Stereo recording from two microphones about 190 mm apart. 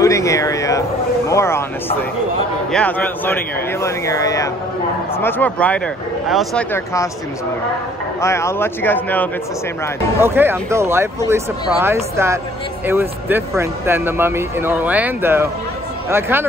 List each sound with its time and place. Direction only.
0.0 s speech: 15° left (ahead or behind); by 6.6 s centre (ahead or behind)
6.7 s speech: 15° left (ahead or behind)
8.2 s speech: 15° left (ahead or behind)
10.2 s speech: 10° right (ahead or behind)